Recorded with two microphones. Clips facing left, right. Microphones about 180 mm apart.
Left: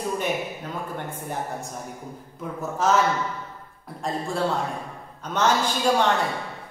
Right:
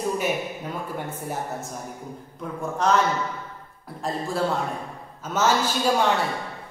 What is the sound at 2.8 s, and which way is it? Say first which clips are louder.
Speech: even; 5° left (ahead or behind).